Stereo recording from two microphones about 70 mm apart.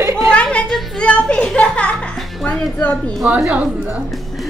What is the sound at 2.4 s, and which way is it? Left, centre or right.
Speech, centre.